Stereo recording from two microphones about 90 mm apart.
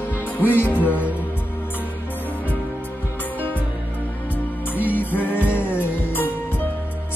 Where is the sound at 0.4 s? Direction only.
20° left (ahead or behind).